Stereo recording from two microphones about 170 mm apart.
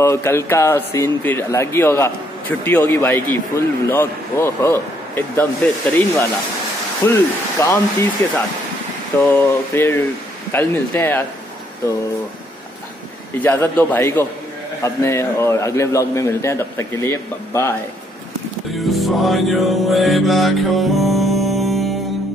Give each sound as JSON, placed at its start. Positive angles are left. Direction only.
{"t": 0.0, "sound": "a man's voice", "side_deg": 15}
{"t": 9.2, "sound": "a man's voice", "side_deg": 15}
{"t": 13.4, "sound": "a man's voice", "side_deg": 10}
{"t": 18.9, "sound": "music", "side_deg": 0}